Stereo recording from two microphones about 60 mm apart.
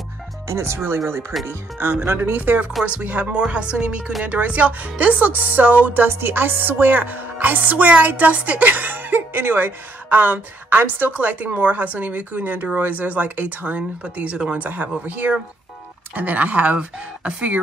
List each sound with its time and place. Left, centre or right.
0.5 s speech: right
2.8 s music: right
6.0 s music: right